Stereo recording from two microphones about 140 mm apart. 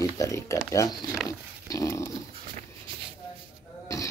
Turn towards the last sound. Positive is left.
turn(degrees=20)  # may be behind; listen again after turning